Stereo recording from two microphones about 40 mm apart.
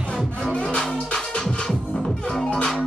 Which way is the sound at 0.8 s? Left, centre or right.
Centre.